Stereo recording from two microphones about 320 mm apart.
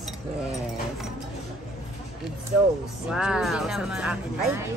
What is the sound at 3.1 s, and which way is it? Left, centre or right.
Speech, centre.